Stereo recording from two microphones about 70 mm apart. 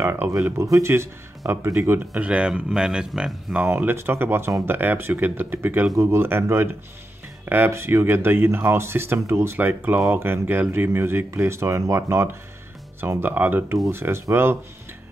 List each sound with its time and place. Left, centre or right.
0.0 s speech: right
2.1 s speech: centre
3.6 s speech: right
9.6 s speech: right